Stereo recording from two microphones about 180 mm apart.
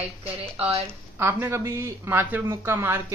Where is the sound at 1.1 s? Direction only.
15° right (ahead or behind).